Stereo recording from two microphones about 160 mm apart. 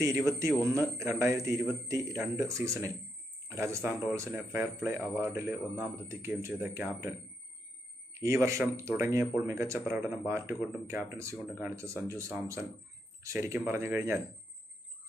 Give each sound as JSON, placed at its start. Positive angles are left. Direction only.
{"t": 0.0, "sound": "a man's voice", "side_deg": -20}